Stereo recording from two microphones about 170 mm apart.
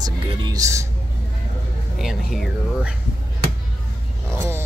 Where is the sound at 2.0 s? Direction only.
Centre (ahead or behind).